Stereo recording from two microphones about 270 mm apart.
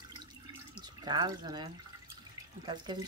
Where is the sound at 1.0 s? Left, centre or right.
Centre.